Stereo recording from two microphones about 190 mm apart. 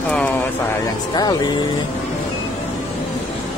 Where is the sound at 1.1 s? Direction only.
20° left (ahead or behind).